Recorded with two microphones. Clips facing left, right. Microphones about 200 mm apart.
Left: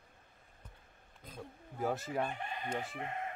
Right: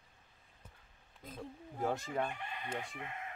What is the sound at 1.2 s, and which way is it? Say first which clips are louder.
Speech: right 2 dB; centre (ahead or behind).